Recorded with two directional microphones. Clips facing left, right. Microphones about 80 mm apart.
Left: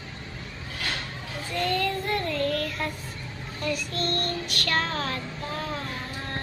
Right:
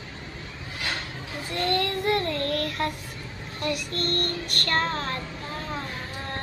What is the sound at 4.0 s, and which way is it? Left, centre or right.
Music, right.